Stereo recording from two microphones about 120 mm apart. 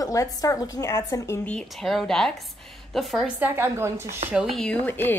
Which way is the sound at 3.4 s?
20° right (ahead or behind).